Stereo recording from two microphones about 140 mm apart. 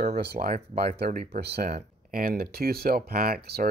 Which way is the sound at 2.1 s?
90° right.